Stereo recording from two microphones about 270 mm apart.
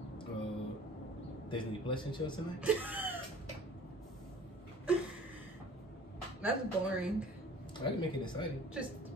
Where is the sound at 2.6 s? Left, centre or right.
Centre.